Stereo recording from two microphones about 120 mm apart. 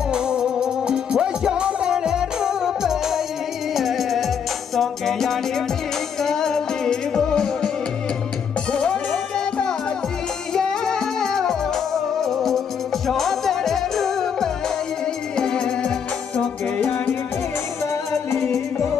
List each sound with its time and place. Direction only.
0.1 s music: 5° right (ahead or behind)
8.7 s music: 5° left (ahead or behind)
18.3 s music: 25° left (ahead or behind)